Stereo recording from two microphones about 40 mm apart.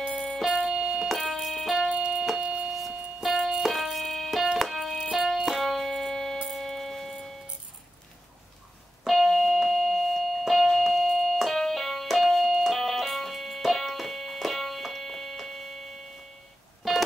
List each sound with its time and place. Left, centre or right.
0.6 s keyboard: centre
1.9 s keyboard: centre
3.2 s music: centre
5.1 s keyboard: centre
6.5 s music: centre
9.0 s music: centre
16.8 s music: centre